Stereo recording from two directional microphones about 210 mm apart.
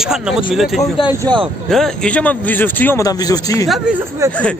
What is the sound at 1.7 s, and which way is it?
A man's voice, centre (ahead or behind).